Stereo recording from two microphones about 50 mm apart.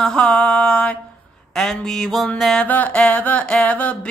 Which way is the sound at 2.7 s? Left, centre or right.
Left.